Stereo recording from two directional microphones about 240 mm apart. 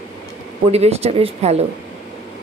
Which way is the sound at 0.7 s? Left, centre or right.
Right.